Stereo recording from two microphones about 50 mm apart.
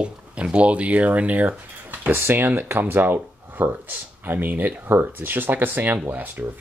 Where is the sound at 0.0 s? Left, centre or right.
Right.